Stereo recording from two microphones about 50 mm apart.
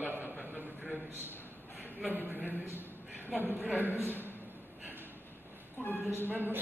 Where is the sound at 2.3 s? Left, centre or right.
Right.